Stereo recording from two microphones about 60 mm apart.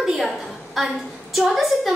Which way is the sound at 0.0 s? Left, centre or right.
Centre.